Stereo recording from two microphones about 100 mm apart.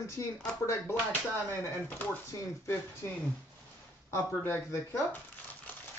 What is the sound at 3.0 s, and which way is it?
Speech, 25° left (ahead or behind).